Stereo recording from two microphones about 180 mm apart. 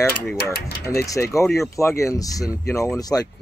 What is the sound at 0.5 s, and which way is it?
Speech, 60° left (ahead or behind).